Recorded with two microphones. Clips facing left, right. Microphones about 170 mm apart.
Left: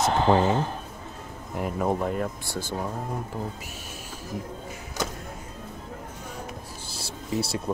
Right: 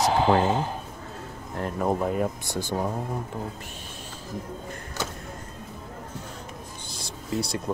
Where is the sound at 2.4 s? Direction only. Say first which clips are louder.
Right 3 dB; 15° right (ahead or behind).